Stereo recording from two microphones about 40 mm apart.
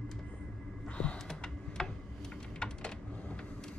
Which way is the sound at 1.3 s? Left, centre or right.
Centre.